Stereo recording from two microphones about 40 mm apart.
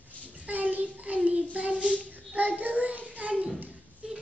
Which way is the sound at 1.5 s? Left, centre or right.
Right.